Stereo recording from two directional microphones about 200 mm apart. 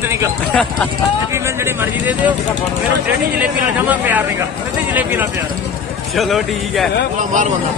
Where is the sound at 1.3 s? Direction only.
10° right (ahead or behind).